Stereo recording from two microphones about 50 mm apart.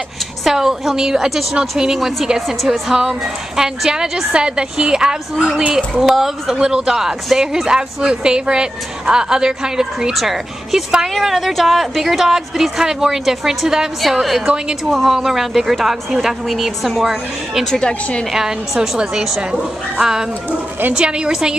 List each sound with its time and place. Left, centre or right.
0.4 s speech: centre
2.0 s speech: centre
3.0 s speech: centre
17.6 s a woman's voice: centre
18.3 s speech: centre